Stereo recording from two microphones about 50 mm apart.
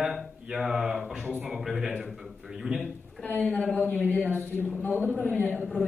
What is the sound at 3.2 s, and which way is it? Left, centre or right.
Speech, centre.